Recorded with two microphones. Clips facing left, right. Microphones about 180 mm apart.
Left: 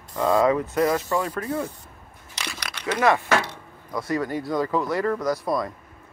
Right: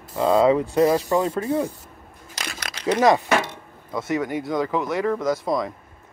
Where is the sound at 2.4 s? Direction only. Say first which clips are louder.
Right 1 dB; 45° right (ahead or behind).